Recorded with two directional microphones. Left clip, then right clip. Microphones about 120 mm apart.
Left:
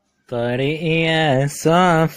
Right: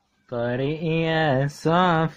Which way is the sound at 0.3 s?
15° left (ahead or behind).